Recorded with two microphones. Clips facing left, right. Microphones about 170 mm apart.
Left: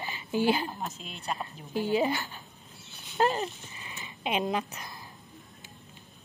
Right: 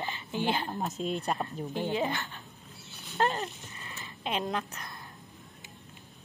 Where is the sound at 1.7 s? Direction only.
5° left (ahead or behind).